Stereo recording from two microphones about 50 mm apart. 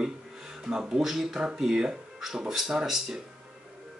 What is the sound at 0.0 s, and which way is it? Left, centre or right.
Speech, centre.